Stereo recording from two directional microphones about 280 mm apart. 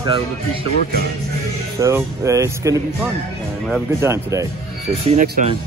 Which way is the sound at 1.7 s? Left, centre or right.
Centre.